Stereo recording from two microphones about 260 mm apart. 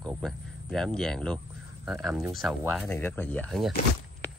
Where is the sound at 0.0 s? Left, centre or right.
Centre.